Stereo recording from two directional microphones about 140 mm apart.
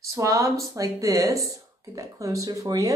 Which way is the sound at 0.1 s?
20° right (ahead or behind).